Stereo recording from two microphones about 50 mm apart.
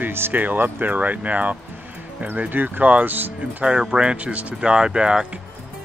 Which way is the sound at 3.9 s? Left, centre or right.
Right.